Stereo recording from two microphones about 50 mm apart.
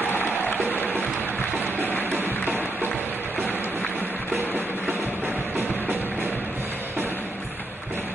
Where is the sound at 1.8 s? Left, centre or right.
Left.